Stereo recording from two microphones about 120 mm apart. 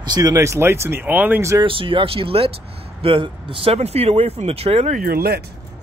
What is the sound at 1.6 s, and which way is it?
Speech, 45° right (ahead or behind).